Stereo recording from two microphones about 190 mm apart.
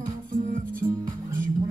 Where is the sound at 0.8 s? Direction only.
15° right (ahead or behind).